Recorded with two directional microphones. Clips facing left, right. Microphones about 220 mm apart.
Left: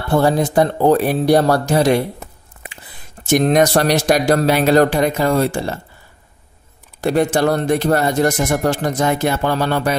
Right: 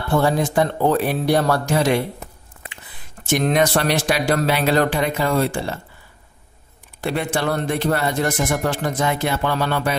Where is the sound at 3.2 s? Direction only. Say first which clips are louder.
Left 5 dB; 40° left (ahead or behind).